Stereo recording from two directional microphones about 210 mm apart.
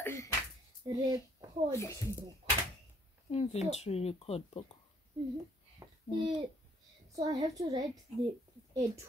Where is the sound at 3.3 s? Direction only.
30° left (ahead or behind).